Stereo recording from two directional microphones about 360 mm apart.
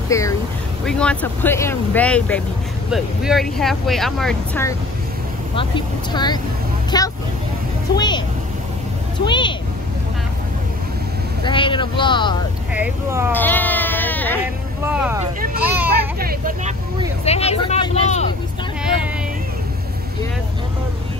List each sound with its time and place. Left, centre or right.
0.1 s speech: centre
9.2 s speech: centre
11.4 s speech: centre
12.7 s speech: centre
13.3 s sheep: centre
14.9 s speech: centre
16.2 s speech: right
17.2 s speech: centre